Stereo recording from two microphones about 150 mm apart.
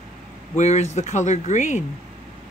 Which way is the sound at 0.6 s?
50° left (ahead or behind).